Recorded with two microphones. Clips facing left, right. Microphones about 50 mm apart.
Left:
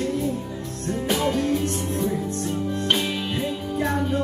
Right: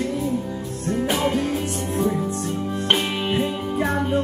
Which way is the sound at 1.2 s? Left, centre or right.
Right.